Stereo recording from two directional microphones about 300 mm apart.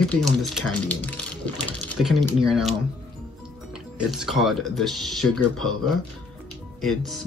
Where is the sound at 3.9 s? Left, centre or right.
Centre.